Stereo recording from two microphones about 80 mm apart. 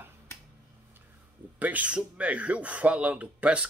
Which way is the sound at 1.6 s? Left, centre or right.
Centre.